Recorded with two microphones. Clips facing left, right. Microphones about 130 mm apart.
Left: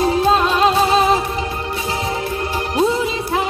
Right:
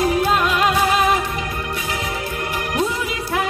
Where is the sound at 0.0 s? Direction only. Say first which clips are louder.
Left 3 dB; 30° left (ahead or behind).